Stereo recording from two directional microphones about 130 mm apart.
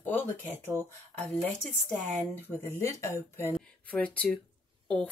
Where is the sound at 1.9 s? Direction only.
15° left (ahead or behind).